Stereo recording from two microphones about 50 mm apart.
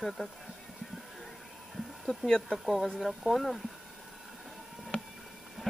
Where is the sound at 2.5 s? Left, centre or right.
Centre.